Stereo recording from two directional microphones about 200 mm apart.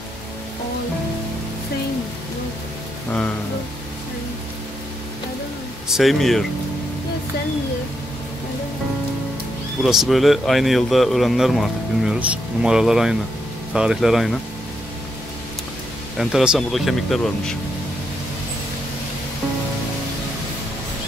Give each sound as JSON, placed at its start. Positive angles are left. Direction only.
{"t": 5.9, "sound": "speech", "side_deg": 0}
{"t": 9.8, "sound": "speech", "side_deg": 0}
{"t": 16.2, "sound": "speech", "side_deg": 0}